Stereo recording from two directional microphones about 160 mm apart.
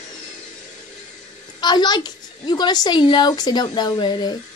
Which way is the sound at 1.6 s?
25° left (ahead or behind).